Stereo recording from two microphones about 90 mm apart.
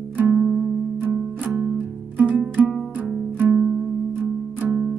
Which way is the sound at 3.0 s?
15° right (ahead or behind).